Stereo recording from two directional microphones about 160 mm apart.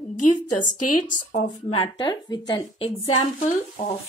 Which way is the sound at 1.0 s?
55° left (ahead or behind).